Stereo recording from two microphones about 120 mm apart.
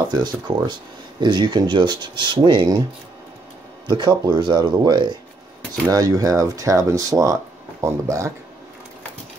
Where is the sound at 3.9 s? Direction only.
40° right (ahead or behind).